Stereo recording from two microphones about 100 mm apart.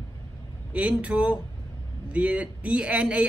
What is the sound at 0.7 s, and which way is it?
Speech, 15° right (ahead or behind).